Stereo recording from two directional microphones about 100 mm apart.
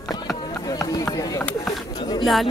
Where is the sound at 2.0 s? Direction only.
50° left (ahead or behind).